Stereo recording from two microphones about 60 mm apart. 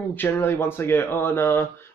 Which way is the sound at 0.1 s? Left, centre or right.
Left.